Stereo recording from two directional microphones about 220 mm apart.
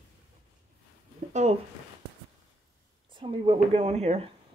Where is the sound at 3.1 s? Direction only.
25° right (ahead or behind).